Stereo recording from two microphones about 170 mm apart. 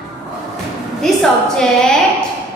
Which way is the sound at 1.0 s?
5° left (ahead or behind).